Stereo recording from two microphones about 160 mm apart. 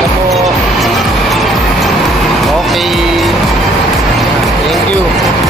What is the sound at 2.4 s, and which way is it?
Music, centre (ahead or behind).